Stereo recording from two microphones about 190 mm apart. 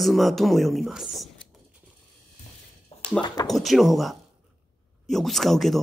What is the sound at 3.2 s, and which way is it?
Speech, 25° left (ahead or behind).